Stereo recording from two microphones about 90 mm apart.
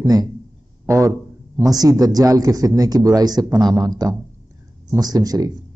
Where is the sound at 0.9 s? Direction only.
35° right (ahead or behind).